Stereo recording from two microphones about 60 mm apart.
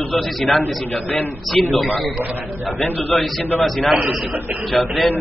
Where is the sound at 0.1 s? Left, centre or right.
Centre.